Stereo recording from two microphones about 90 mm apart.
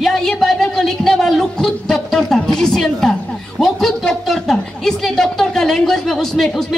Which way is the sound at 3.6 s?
5° left (ahead or behind).